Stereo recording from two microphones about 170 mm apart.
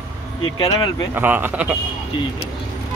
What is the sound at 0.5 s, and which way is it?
Speech, 20° left (ahead or behind).